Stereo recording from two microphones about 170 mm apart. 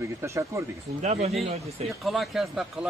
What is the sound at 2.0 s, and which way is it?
Speech, centre (ahead or behind).